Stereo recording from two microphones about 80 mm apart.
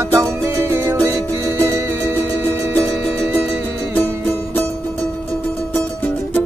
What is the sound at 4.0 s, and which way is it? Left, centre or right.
Music, left.